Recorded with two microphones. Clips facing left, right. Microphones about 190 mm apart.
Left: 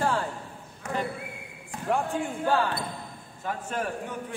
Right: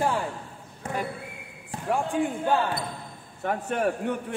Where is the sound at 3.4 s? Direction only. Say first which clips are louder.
Right 5 dB; 65° right (ahead or behind).